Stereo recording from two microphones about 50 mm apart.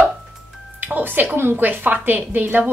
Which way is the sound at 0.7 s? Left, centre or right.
Right.